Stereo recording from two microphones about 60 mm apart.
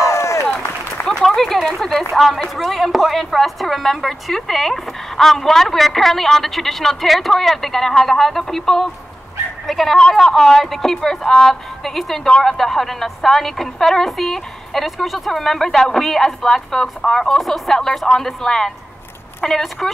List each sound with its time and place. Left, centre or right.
0.0 s applause: left
1.2 s a woman's voice: centre